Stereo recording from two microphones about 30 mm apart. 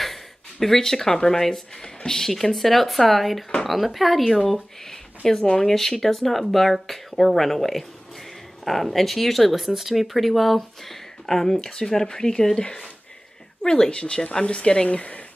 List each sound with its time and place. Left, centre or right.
0.0 s a sound: centre
1.4 s speech: centre
4.8 s a sound: centre
5.6 s speech: centre
9.7 s speech: centre; by 14.9 s left
14.9 s speech: left